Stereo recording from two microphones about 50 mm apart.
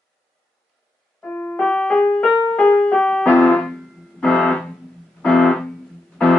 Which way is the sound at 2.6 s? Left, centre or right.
Left.